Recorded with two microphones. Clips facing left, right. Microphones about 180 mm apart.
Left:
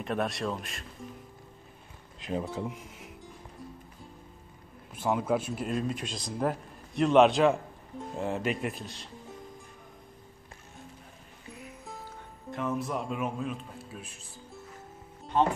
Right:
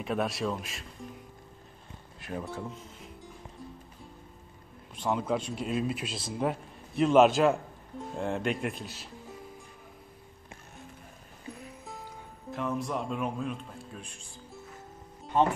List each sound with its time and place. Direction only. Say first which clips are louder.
0.0 s speech: right 1 dB; centre (ahead or behind)
2.1 s a sound: left 4 dB; 20° left (ahead or behind)
2.7 s music: even; 15° left (ahead or behind)
4.9 s speech: left 2 dB; 5° left (ahead or behind)
12.4 s a man's voice: even; centre (ahead or behind)